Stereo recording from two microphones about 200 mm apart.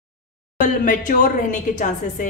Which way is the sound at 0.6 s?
40° left (ahead or behind).